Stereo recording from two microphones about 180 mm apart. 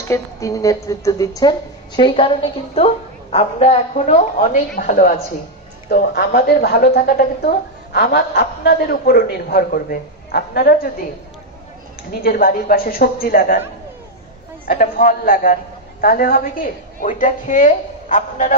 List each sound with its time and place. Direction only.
0.1 s a woman's voice: 20° left (ahead or behind); by 10.9 s 55° left (ahead or behind)
12.1 s a woman's voice: 55° left (ahead or behind)
14.7 s a woman's voice: 50° left (ahead or behind)